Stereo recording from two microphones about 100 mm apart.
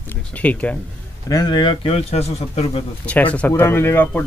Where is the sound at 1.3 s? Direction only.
45° left (ahead or behind).